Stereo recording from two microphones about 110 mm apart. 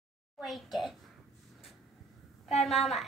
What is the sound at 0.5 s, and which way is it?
Speech, centre (ahead or behind).